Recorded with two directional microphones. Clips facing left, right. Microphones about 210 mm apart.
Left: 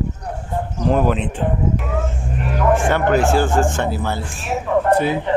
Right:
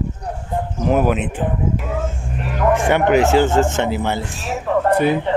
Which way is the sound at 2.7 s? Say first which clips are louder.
Right 2 dB; 15° right (ahead or behind).